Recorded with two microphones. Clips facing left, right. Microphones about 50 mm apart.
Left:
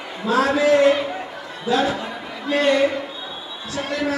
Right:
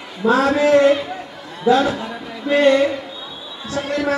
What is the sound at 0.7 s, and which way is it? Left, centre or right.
Speech, left.